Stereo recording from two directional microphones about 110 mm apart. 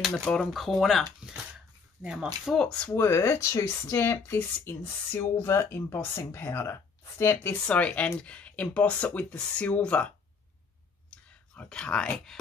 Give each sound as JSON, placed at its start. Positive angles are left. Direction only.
{"t": 0.0, "sound": "speech", "side_deg": 5}
{"t": 2.0, "sound": "speech", "side_deg": -10}
{"t": 2.5, "sound": "speech", "side_deg": 5}
{"t": 2.9, "sound": "speech", "side_deg": 25}
{"t": 7.6, "sound": "speech", "side_deg": 10}
{"t": 11.1, "sound": "whispering", "side_deg": 10}